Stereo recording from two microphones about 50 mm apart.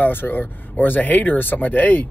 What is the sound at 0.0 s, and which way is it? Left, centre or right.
Speech, left.